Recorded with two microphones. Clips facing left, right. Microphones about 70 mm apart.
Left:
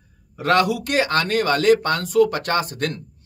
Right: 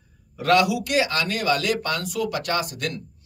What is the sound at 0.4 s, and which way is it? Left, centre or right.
Speech, left.